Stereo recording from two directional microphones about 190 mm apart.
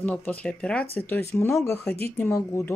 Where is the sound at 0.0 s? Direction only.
10° left (ahead or behind).